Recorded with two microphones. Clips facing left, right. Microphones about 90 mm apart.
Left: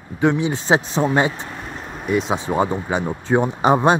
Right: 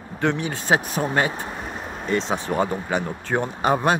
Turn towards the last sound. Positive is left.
turn(degrees=25)  # may be behind; listen again after turning